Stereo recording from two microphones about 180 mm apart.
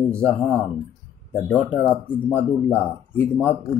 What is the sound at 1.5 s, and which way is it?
Speech, 10° left (ahead or behind).